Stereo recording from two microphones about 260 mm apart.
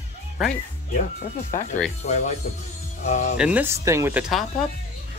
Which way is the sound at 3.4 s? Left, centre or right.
Centre.